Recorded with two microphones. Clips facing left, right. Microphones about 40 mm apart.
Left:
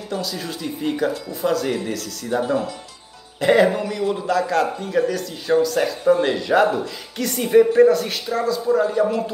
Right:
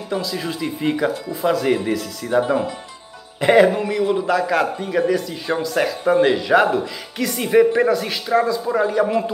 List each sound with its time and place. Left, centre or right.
0.1 s a man's voice: right
0.7 s speech: right
1.3 s a man's voice: right